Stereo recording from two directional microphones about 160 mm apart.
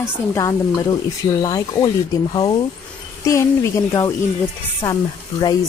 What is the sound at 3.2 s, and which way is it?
Speech, 20° left (ahead or behind).